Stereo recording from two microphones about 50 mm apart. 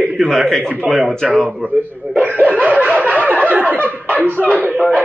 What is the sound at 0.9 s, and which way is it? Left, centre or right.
Speech, centre.